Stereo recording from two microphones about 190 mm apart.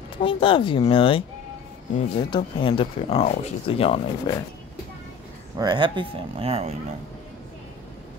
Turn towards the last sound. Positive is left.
turn(degrees=-35)  # may be behind; listen again after turning